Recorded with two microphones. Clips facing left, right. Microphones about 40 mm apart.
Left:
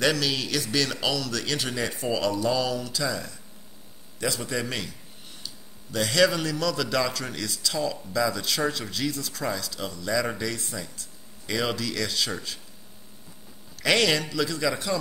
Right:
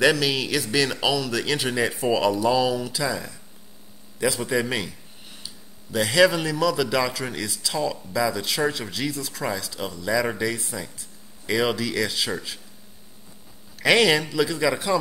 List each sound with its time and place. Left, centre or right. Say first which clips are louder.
0.0 s a man's voice: right 4 dB; centre
13.7 s a man's voice: right 4 dB; centre